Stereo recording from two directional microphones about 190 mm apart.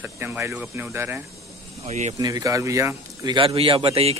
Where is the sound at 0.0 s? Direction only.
10° right (ahead or behind).